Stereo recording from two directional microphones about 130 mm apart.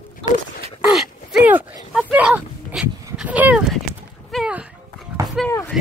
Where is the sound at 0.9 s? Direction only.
5° right (ahead or behind).